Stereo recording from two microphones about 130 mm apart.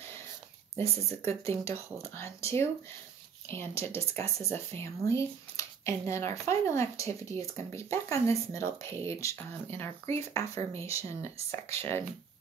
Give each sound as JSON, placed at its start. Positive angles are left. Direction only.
{"t": 0.7, "sound": "speech", "side_deg": 20}